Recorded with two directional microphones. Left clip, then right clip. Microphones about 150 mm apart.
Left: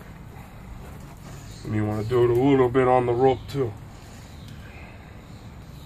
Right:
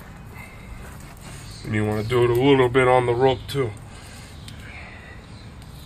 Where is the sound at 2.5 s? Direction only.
15° left (ahead or behind); by 3.6 s 30° left (ahead or behind).